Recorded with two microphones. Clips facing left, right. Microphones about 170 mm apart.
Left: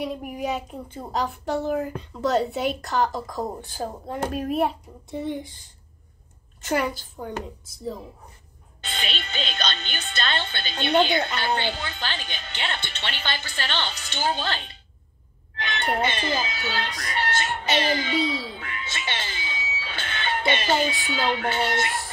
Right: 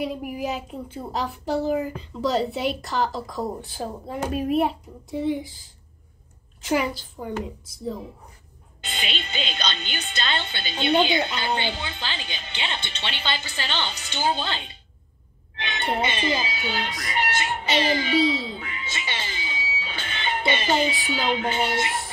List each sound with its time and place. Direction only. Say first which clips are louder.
0.0 s a woman's voice: right 1 dB; 5° right (ahead or behind)
8.8 s a woman's voice: even; 15° right (ahead or behind)
15.6 s music: left 1 dB; 15° right (ahead or behind)
16.0 s a woman's voice: even; 10° right (ahead or behind)
17.2 s meow: even; 15° right (ahead or behind)
18.2 s speech: right 4 dB; 25° right (ahead or behind)
18.6 s music: even; 15° right (ahead or behind)
20.8 s a woman's voice: even; 15° right (ahead or behind)